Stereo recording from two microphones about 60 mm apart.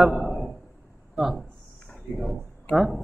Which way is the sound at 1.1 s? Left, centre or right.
Centre.